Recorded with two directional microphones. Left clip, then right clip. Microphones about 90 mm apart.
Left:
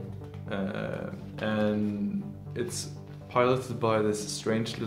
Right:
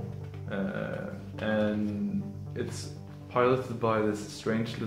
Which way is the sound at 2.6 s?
90° left.